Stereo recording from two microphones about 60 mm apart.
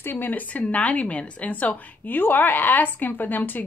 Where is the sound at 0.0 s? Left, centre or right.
Left.